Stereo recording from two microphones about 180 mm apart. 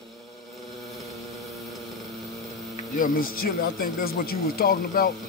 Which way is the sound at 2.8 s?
50° left (ahead or behind).